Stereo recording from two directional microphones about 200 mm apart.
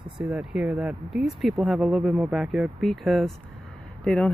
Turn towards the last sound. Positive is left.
turn(degrees=5)  # may be behind; listen again after turning